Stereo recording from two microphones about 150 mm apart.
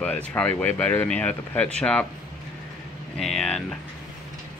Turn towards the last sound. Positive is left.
turn(degrees=5)  # may be behind; listen again after turning